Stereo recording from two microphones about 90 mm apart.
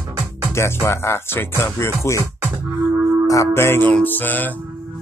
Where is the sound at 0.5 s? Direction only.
30° left (ahead or behind).